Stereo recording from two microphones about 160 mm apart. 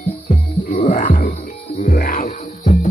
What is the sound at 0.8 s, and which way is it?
Music, 60° left (ahead or behind).